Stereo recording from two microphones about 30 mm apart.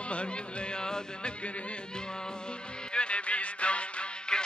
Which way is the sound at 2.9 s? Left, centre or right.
Left.